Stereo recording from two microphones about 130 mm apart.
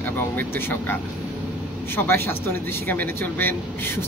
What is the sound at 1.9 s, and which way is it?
A man's voice, 15° left (ahead or behind).